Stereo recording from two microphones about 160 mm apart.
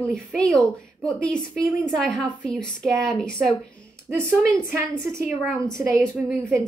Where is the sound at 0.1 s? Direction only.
Centre (ahead or behind).